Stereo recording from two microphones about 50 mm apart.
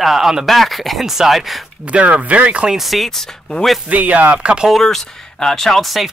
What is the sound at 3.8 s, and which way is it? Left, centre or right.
Speech, right.